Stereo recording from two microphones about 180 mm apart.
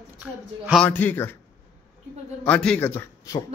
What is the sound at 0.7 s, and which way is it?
Speech, 10° left (ahead or behind).